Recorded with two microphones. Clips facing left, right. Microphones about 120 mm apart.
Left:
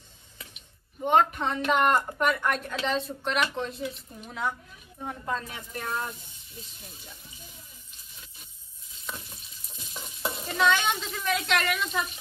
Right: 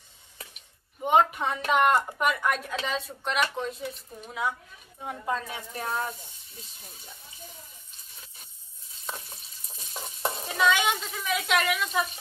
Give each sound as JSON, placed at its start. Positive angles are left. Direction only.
{"t": 1.0, "sound": "a woman's voice", "side_deg": -10}
{"t": 9.0, "sound": "stir", "side_deg": -35}
{"t": 10.4, "sound": "a woman's voice", "side_deg": -5}